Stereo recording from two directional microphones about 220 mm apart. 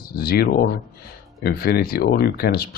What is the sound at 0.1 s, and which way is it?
Speech, 45° left (ahead or behind).